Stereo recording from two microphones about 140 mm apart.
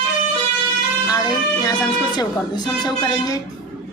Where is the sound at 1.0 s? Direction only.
25° left (ahead or behind).